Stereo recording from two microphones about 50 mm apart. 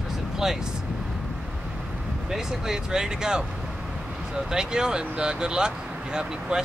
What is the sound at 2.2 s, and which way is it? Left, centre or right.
Speech, centre.